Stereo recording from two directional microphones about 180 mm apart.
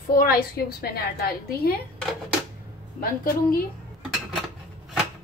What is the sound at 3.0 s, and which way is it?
Speech, 55° left (ahead or behind).